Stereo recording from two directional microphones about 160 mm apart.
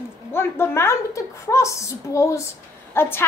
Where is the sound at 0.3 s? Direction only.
15° left (ahead or behind).